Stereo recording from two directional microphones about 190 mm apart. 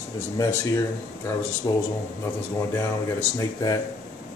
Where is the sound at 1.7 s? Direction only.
20° left (ahead or behind).